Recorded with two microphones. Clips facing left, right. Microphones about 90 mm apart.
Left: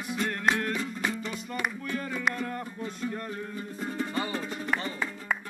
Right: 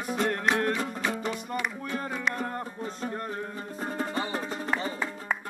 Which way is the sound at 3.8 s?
40° right (ahead or behind).